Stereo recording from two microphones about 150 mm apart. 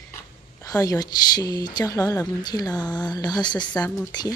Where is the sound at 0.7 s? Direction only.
25° left (ahead or behind).